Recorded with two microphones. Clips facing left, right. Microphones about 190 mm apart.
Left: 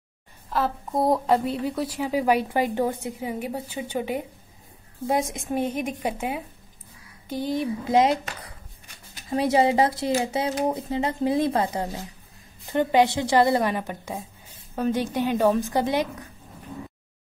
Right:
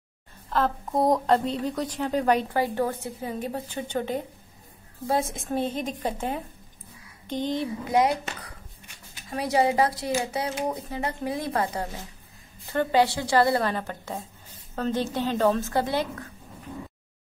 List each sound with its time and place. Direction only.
0.5 s a woman's voice: 5° left (ahead or behind)
7.9 s a woman's voice: 20° left (ahead or behind)